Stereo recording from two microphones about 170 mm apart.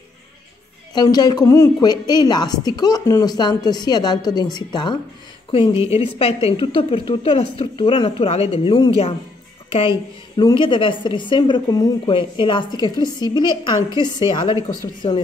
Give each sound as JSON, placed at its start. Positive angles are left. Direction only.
{"t": 0.9, "sound": "a woman's voice", "side_deg": 25}
{"t": 15.0, "sound": "a woman's voice", "side_deg": 35}